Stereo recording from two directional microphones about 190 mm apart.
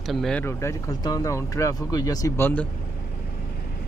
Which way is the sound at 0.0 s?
Centre (ahead or behind).